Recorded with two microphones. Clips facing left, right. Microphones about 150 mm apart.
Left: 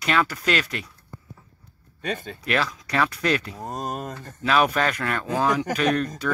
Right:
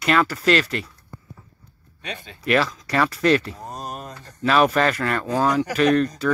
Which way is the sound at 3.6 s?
45° left (ahead or behind).